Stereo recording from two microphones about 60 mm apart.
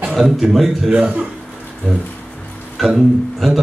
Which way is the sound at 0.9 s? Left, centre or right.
Centre.